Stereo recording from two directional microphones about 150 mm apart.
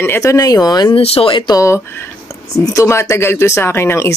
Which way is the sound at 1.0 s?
40° left (ahead or behind).